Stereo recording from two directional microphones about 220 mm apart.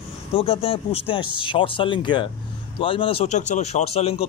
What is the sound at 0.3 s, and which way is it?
Speech, 25° left (ahead or behind).